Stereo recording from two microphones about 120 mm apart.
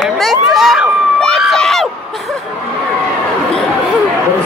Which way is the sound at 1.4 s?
Centre (ahead or behind).